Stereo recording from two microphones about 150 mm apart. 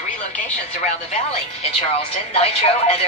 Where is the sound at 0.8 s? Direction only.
45° left (ahead or behind).